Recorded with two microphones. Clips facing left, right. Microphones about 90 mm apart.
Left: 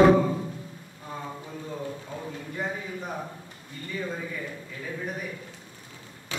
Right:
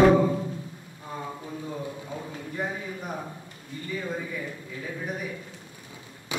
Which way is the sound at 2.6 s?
5° right (ahead or behind).